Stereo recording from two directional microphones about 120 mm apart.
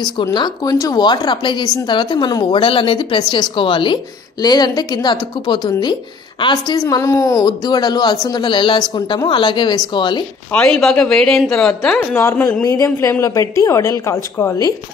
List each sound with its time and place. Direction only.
0.0 s a woman's voice: 35° left (ahead or behind)
10.5 s speech: 5° left (ahead or behind)
12.1 s a woman's voice: 20° left (ahead or behind)